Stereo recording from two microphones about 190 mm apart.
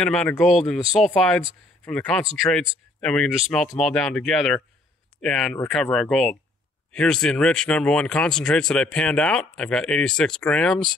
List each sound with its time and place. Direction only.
0.0 s speech: 5° left (ahead or behind)
2.4 s speech: 15° left (ahead or behind)
3.0 s speech: 5° left (ahead or behind)